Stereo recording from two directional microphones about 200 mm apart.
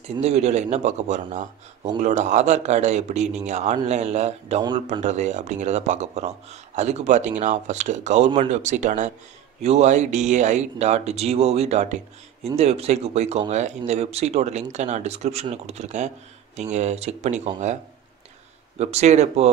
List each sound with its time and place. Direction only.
0.2 s speech: 35° right (ahead or behind)
18.8 s speech: 35° right (ahead or behind)